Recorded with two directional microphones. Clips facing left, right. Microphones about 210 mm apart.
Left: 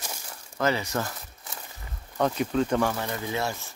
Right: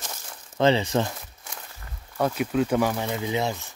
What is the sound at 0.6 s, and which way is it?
Speech, 25° right (ahead or behind).